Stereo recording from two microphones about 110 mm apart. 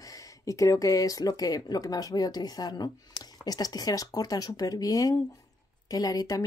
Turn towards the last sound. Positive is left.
turn(degrees=35)  # may be behind; listen again after turning